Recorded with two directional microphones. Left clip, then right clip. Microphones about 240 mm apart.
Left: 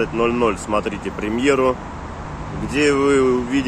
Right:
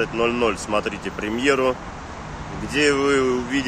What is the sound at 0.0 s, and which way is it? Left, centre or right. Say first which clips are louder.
Speech: left 2 dB; centre.